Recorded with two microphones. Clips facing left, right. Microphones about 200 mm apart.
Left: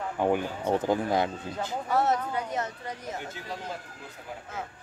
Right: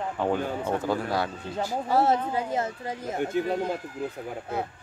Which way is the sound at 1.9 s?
30° right (ahead or behind).